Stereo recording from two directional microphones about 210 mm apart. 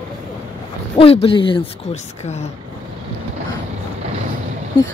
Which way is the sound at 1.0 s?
25° left (ahead or behind).